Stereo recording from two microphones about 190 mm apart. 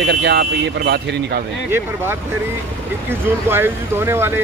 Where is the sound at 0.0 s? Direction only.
65° right (ahead or behind).